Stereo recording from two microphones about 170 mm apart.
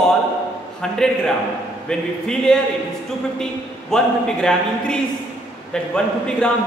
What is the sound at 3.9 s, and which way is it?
Speech, 5° left (ahead or behind).